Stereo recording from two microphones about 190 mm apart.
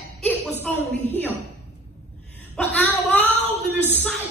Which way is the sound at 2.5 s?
5° left (ahead or behind).